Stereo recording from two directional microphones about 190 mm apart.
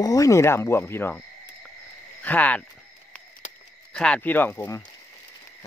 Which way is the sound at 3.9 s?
5° left (ahead or behind).